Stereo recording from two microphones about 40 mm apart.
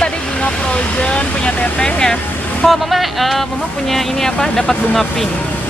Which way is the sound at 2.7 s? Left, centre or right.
Centre.